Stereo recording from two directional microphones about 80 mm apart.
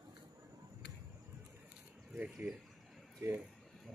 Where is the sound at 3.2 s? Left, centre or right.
Right.